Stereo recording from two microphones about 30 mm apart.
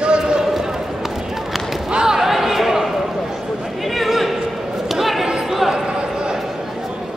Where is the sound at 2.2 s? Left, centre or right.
Centre.